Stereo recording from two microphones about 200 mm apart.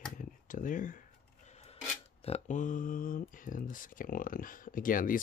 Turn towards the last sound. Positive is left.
turn(degrees=45)  # may be behind; listen again after turning